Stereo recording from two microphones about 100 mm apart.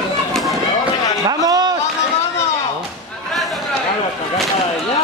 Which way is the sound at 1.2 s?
40° right (ahead or behind).